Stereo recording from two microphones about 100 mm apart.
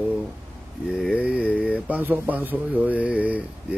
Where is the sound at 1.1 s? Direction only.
10° right (ahead or behind).